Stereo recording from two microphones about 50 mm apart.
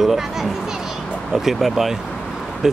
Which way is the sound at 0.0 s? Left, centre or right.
Centre.